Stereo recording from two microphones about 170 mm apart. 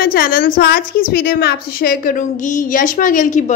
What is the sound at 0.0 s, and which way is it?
A woman's voice, 60° left (ahead or behind).